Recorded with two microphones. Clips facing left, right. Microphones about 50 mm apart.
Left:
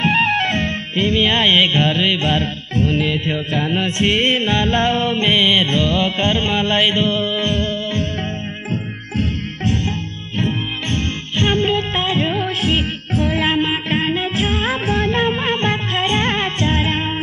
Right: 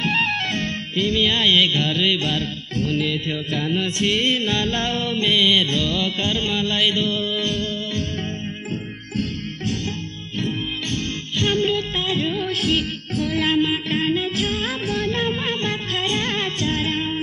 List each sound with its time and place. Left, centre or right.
0.0 s music: left
9.1 s music: left